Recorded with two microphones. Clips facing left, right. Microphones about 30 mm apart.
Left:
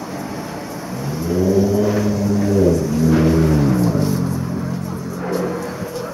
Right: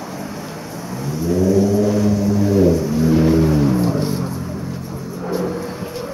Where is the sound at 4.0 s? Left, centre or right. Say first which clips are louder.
Left 2 dB; right.